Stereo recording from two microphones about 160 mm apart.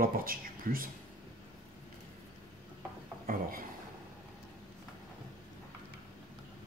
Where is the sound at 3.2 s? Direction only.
65° right (ahead or behind).